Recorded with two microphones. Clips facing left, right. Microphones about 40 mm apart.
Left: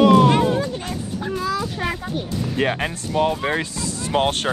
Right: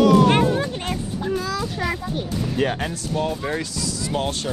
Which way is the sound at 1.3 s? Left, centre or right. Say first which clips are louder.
Left 2 dB; centre.